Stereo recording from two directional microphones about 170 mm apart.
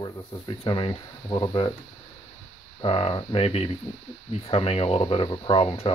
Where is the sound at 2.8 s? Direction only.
30° left (ahead or behind).